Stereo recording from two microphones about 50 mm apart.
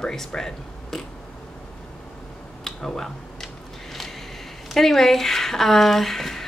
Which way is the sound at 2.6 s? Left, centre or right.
Centre.